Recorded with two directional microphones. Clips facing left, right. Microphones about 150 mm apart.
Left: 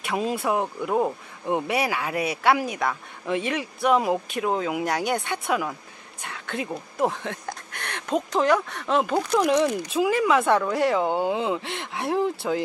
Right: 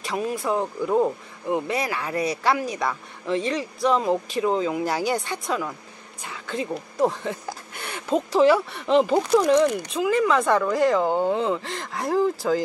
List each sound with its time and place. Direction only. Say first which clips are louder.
0.1 s speech: left 1 dB; 20° left (ahead or behind); by 5.2 s centre (ahead or behind)
5.5 s speech: left 2 dB; 10° left (ahead or behind)
6.2 s a sound: right 2 dB; centre (ahead or behind)
7.0 s speech: right 2 dB; centre (ahead or behind)
9.4 s speech: right 2 dB; 5° left (ahead or behind)